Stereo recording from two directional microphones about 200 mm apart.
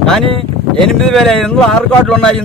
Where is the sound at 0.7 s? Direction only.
Centre (ahead or behind).